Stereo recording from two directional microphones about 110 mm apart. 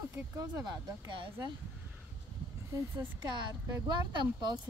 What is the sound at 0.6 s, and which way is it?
Speech, 45° right (ahead or behind).